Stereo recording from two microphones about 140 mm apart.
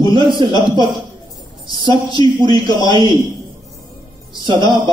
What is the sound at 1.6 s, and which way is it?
A man's voice, 35° right (ahead or behind).